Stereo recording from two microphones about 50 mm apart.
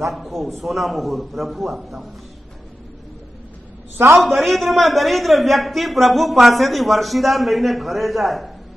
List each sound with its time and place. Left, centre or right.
0.0 s a man's voice: centre
4.2 s a man's voice: centre